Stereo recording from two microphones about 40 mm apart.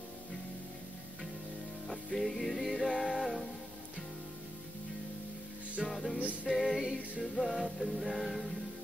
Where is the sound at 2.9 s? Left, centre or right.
Centre.